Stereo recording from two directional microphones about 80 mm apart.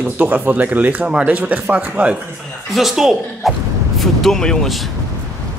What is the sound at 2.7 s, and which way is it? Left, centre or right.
Speech, centre.